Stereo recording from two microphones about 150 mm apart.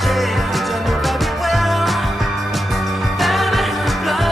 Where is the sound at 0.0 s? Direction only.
Centre (ahead or behind).